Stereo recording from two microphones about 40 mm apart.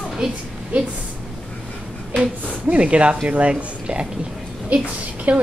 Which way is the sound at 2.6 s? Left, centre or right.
Right.